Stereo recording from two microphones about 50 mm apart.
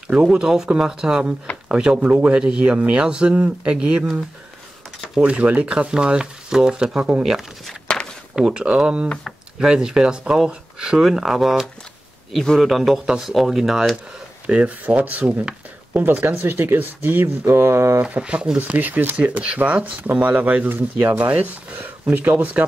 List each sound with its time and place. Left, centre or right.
0.3 s speech: centre
2.0 s speech: right
3.3 s speech: right
3.7 s speech: centre
5.2 s speech: right
7.9 s a sound: left
8.5 s a man's voice: centre
13.3 s speech: centre
14.4 s speech: right
18.2 s speech: right
18.6 s speech: right